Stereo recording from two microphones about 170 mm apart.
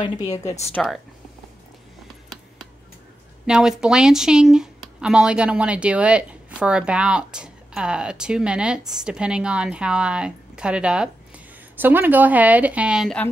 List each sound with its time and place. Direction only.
0.0 s a woman's voice: 20° left (ahead or behind)
0.8 s speech: 5° left (ahead or behind)
3.4 s speech: 5° right (ahead or behind)